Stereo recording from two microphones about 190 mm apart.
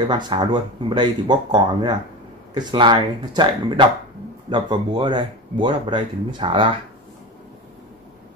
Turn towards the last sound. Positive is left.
turn(degrees=-25)  # may be behind; listen again after turning